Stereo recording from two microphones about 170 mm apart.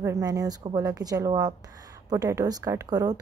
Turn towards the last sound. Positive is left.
turn(degrees=-20)  # may be behind; listen again after turning